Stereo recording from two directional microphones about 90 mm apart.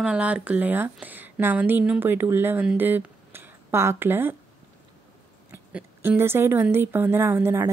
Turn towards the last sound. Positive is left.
turn(degrees=-25)  # may be behind; listen again after turning